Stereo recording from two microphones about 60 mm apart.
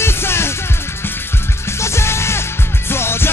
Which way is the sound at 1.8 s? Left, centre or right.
Left.